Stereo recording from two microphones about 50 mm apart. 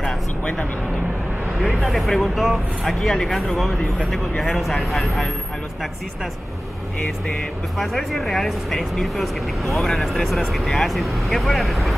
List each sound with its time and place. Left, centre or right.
0.0 s music: centre
1.8 s speech: centre
7.2 s speech: centre